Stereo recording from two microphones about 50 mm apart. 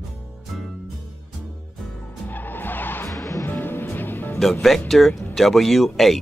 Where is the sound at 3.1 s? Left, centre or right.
Left.